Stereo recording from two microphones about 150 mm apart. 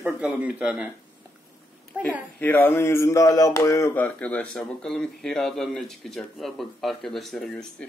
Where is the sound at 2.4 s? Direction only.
10° left (ahead or behind).